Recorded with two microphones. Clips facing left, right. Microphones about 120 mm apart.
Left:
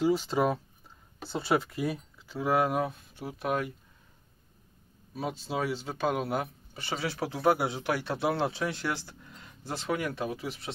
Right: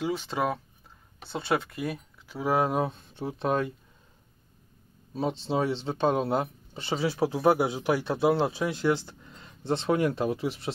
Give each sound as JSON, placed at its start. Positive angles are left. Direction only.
{"t": 0.2, "sound": "speech", "side_deg": 0}
{"t": 5.1, "sound": "speech", "side_deg": -25}